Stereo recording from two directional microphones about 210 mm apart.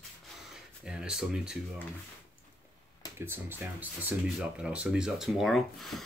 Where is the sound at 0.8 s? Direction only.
5° right (ahead or behind).